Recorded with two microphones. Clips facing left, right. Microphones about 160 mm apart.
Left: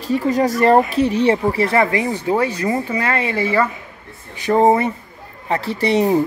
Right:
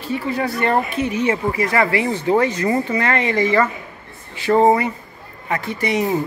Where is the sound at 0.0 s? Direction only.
40° left (ahead or behind).